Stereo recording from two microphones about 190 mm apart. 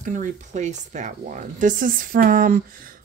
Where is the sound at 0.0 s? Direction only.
40° right (ahead or behind).